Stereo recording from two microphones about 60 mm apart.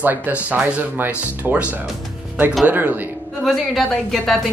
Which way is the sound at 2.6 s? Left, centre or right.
Right.